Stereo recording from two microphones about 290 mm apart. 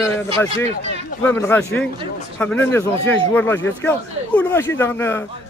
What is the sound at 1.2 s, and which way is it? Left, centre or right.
Speech, centre.